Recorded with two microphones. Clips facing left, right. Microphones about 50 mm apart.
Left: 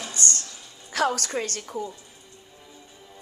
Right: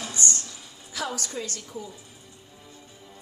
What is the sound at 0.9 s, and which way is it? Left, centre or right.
Speech, left.